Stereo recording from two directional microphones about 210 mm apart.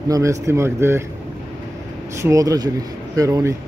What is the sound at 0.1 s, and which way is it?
Speech, 15° right (ahead or behind).